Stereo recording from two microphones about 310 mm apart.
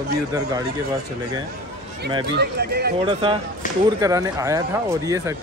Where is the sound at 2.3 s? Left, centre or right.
Right.